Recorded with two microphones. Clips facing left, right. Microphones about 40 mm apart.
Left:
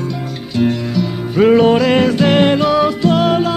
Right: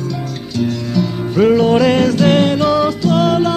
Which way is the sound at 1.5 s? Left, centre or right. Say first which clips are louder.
Left 1 dB; left.